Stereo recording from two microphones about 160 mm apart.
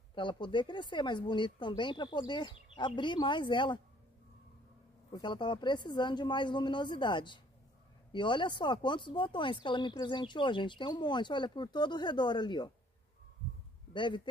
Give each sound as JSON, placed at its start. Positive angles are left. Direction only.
{"t": 0.1, "sound": "speech", "side_deg": 30}
{"t": 5.1, "sound": "speech", "side_deg": 30}
{"t": 13.9, "sound": "speech", "side_deg": 30}